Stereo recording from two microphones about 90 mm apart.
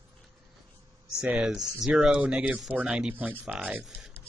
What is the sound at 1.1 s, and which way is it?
Speech, 5° right (ahead or behind).